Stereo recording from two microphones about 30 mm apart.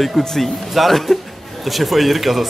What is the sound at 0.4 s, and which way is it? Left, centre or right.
A man's voice, centre.